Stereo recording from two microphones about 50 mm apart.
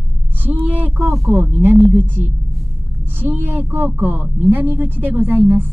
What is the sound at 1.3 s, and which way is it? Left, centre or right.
Speech, right.